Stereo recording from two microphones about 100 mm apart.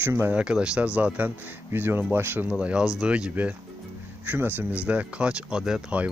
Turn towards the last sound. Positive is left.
turn(degrees=-10)  # may be behind; listen again after turning